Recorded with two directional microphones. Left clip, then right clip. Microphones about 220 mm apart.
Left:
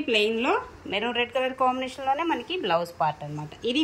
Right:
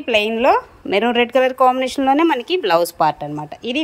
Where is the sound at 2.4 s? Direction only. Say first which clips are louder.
Right 10 dB; 30° right (ahead or behind).